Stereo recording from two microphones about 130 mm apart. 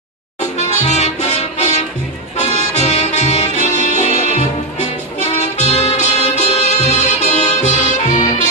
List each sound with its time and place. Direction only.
0.6 s music: 60° left (ahead or behind)